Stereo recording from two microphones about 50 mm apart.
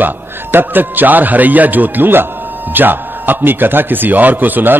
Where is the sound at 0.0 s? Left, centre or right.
Right.